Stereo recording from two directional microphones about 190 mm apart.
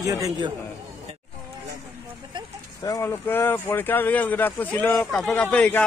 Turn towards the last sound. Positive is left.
turn(degrees=5)  # may be behind; listen again after turning